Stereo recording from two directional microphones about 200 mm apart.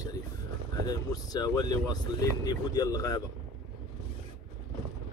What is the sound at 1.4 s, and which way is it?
Speech, 20° left (ahead or behind).